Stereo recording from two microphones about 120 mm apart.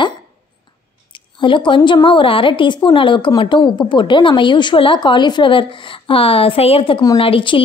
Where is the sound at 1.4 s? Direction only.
45° left (ahead or behind).